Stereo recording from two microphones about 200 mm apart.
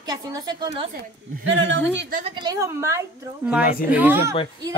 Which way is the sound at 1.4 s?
70° right (ahead or behind).